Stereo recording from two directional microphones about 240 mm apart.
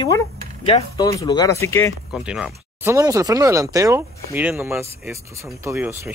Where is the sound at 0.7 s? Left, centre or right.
Centre.